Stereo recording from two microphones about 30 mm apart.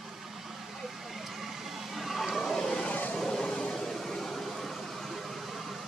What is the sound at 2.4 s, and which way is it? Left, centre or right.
Vehicle, centre.